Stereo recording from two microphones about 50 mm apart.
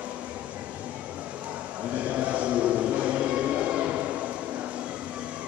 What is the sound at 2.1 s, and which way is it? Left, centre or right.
Music, right.